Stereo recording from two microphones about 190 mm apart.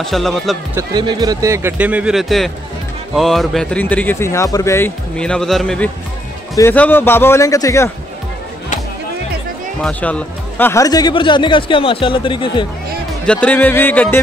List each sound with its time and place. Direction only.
0.0 s speech: centre (ahead or behind)
0.7 s speech: 20° right (ahead or behind); by 7.9 s 15° left (ahead or behind)
9.8 s speech: 10° left (ahead or behind); by 12.6 s 25° left (ahead or behind)
13.2 s speech: 5° left (ahead or behind)